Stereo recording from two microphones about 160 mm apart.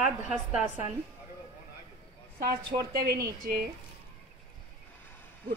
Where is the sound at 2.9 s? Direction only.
90° right.